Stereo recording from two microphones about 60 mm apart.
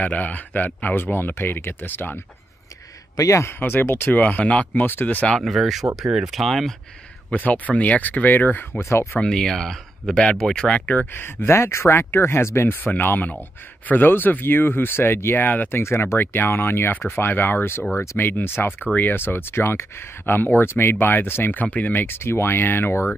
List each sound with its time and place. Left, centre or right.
0.0 s speech: left
3.2 s a man's voice: left
3.5 s speech: left
4.1 s speech: left
5.4 s speech: centre
7.2 s speech: left
8.7 s speech: left
9.2 s speech: centre
11.1 s speech: left
15.8 s speech: left
16.2 s speech: left
21.5 s speech: left